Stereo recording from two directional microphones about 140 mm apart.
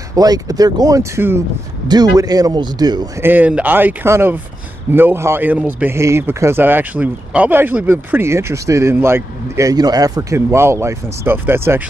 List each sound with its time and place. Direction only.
0.1 s speech: 25° right (ahead or behind)
3.2 s speech: 15° right (ahead or behind)